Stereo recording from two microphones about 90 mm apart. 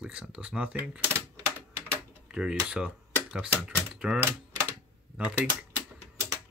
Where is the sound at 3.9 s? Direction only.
10° right (ahead or behind).